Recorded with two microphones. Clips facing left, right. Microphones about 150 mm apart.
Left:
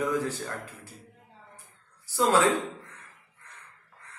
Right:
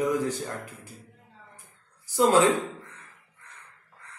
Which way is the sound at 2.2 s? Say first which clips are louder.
Right 3 dB; 15° right (ahead or behind).